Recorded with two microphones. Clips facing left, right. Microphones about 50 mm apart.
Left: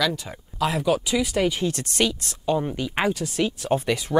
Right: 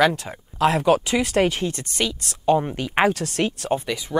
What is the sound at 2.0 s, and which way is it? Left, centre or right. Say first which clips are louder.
Speech: left 2 dB; centre.